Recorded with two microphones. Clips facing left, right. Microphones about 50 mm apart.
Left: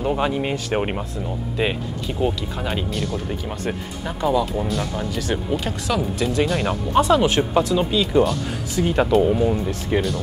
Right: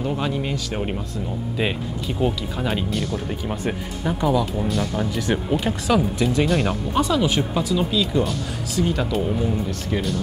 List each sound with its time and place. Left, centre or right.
0.0 s speech: centre
0.7 s speech: left
1.6 s speech: centre
6.9 s speech: left
7.9 s speech: centre
8.8 s speech: left
9.3 s speech: centre